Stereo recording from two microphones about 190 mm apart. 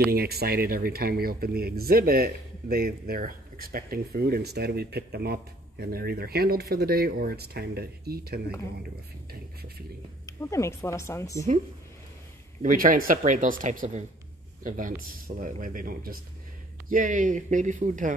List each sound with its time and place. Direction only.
0.0 s speech: 55° right (ahead or behind)
10.2 s speech: 15° left (ahead or behind)
12.6 s speech: 45° right (ahead or behind)